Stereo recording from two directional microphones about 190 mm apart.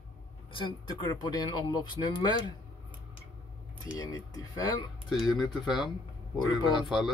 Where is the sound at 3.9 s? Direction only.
20° left (ahead or behind).